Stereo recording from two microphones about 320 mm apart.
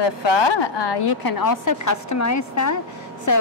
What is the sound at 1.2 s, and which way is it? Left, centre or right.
A woman's voice, left.